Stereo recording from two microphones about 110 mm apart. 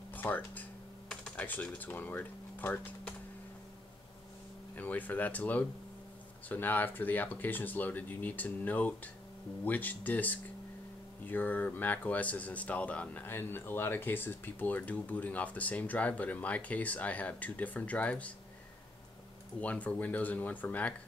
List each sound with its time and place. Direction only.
0.1 s speech: 15° left (ahead or behind)
4.7 s speech: 15° left (ahead or behind)
19.6 s speech: 15° left (ahead or behind)